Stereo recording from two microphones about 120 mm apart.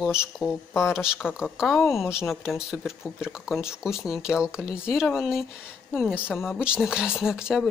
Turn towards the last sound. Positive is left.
turn(degrees=-5)  # may be behind; listen again after turning